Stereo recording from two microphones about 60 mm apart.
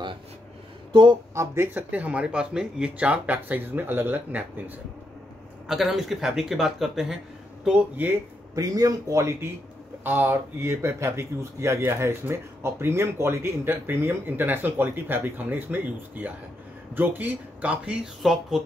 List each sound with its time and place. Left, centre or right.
1.3 s speech: right
1.7 s speech: right
5.7 s speech: centre
7.9 s speech: right
8.5 s speech: right
10.0 s speech: right
18.2 s speech: centre